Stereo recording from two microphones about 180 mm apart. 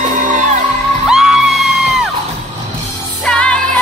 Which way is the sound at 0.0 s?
45° right (ahead or behind).